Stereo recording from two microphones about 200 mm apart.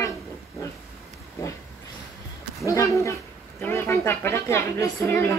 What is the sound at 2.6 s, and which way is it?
A woman's voice, 15° left (ahead or behind).